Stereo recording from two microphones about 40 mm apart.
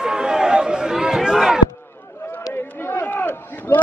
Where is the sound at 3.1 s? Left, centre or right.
Left.